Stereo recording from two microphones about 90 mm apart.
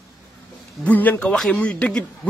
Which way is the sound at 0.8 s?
20° left (ahead or behind).